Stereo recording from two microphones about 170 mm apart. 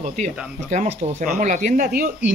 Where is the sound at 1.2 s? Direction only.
45° right (ahead or behind).